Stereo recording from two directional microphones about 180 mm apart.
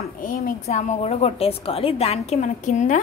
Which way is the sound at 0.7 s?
40° left (ahead or behind).